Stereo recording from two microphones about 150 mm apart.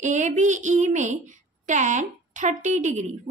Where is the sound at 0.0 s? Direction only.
55° right (ahead or behind).